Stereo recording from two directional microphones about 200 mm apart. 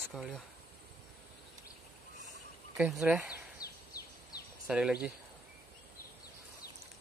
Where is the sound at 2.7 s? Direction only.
5° right (ahead or behind).